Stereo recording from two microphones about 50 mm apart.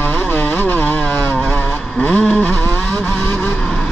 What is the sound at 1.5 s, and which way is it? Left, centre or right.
Vehicle, left.